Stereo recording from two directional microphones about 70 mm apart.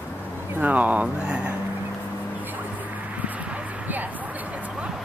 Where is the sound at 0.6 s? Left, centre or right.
Right.